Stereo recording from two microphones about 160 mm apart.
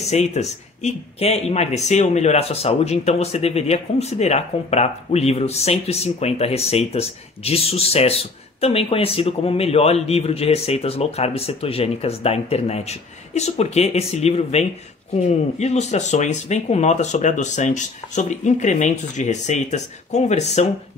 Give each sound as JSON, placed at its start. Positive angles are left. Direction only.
{"t": 0.0, "sound": "speech", "side_deg": 45}